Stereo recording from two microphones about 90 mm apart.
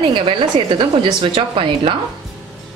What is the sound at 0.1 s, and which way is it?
A woman's voice, 70° right (ahead or behind).